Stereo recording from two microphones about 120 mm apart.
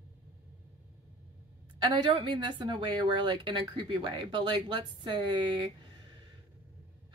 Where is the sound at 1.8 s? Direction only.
40° right (ahead or behind).